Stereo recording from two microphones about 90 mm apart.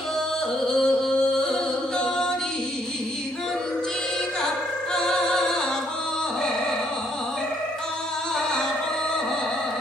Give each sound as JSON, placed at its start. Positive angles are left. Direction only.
{"t": 0.7, "sound": "music", "side_deg": 5}
{"t": 4.9, "sound": "music", "side_deg": 5}